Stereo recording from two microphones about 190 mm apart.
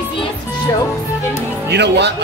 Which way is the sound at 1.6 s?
60° right (ahead or behind).